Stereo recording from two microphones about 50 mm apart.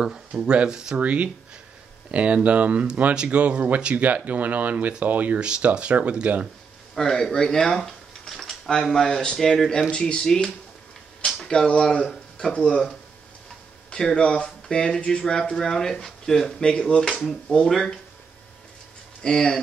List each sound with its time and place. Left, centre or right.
0.3 s speech: right
0.9 s speech: right
7.0 s speech: centre
9.8 s speech: centre
14.1 s speech: left
19.2 s speech: centre